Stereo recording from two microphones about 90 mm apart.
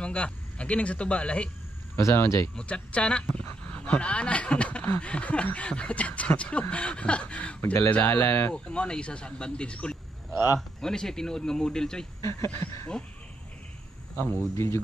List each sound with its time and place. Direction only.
0.0 s speech: 15° left (ahead or behind)
2.0 s speech: 30° left (ahead or behind)
2.5 s speech: 15° left (ahead or behind)
7.9 s speech: 25° left (ahead or behind)
8.6 s speech: 10° left (ahead or behind)
10.3 s speech: 25° right (ahead or behind)
10.8 s speech: 5° left (ahead or behind)
12.2 s speech: 30° left (ahead or behind)
14.5 s speech: 30° left (ahead or behind)